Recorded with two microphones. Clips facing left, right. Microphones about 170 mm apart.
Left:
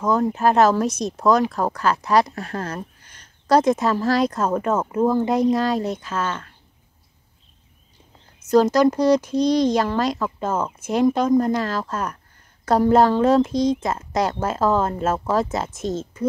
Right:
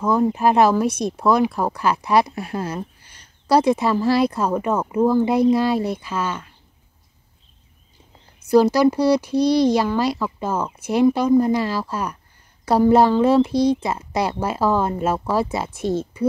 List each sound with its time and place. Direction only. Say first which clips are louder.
0.0 s speech: right 1 dB; 10° right (ahead or behind)
3.0 s a sound: even; 55° left (ahead or behind)
3.4 s speech: even; 10° right (ahead or behind)
8.5 s speech: right 1 dB; 10° right (ahead or behind)